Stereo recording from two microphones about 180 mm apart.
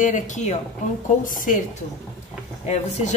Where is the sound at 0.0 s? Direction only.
45° left (ahead or behind).